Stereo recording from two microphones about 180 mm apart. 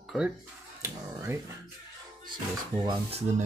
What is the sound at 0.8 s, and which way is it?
Speech, 15° right (ahead or behind).